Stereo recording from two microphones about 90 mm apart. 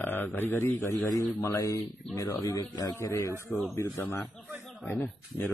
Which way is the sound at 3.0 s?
35° left (ahead or behind).